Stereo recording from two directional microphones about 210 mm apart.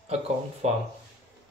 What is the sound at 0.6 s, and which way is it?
Speech, 30° right (ahead or behind).